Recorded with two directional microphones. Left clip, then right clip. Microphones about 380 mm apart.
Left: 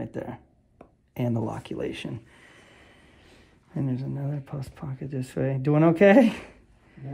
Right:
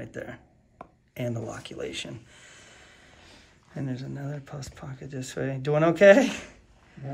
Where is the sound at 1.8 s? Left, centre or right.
Centre.